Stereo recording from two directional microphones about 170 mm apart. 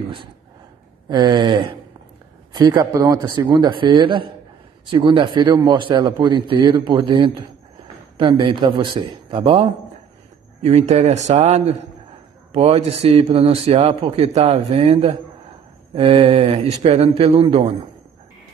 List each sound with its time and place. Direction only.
1.0 s a man's voice: 25° right (ahead or behind)
10.6 s a man's voice: 40° right (ahead or behind)